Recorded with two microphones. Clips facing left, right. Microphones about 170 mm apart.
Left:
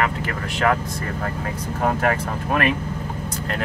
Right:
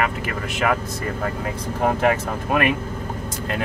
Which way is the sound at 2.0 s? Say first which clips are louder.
Right 2 dB; 15° right (ahead or behind).